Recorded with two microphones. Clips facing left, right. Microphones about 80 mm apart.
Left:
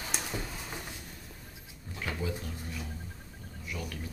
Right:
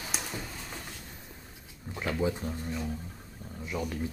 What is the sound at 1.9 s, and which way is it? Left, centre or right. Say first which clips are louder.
Speech: right 6 dB; right.